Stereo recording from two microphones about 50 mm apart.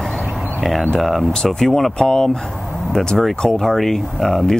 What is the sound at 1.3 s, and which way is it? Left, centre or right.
Speech, centre.